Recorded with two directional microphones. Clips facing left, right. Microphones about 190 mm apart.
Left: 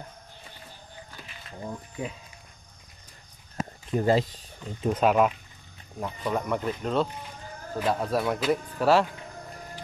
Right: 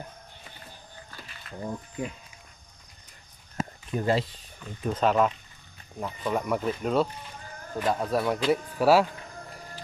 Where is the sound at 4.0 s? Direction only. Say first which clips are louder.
Left 3 dB; 40° left (ahead or behind).